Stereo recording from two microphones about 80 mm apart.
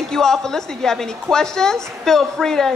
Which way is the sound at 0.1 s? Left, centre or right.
Centre.